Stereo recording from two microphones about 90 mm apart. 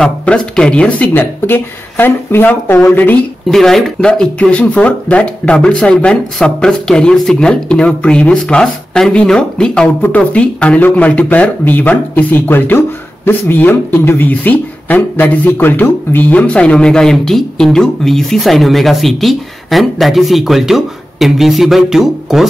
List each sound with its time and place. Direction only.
0.2 s speech: 10° left (ahead or behind)
3.4 s speech: 5° left (ahead or behind)